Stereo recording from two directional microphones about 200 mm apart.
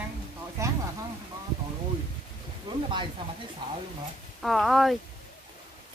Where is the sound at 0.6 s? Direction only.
15° right (ahead or behind).